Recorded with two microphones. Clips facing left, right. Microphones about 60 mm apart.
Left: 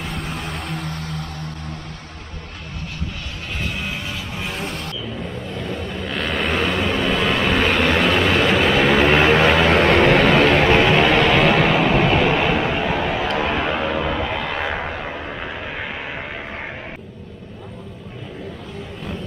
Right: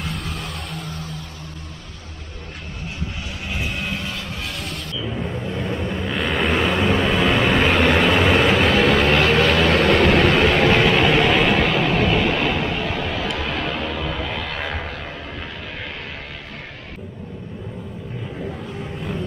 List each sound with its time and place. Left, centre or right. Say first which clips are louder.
0.4 s vehicle: left 3 dB; left
5.0 s vehicle: right 2 dB; centre
5.4 s vehicle: right 2 dB; centre
6.1 s vehicle: right 1 dB; centre; by 10.1 s left
10.1 s vehicle: left 2 dB; centre
13.4 s a sound: left 4 dB; centre